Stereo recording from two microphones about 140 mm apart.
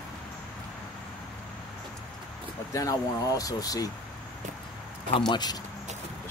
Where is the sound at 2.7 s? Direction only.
25° left (ahead or behind).